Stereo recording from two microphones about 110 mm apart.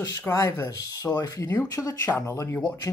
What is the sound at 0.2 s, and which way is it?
Speech, 30° left (ahead or behind).